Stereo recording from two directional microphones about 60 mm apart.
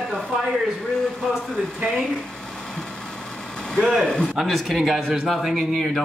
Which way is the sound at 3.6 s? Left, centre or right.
Centre.